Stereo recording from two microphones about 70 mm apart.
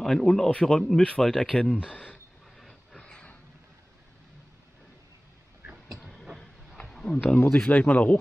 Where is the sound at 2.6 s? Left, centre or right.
Centre.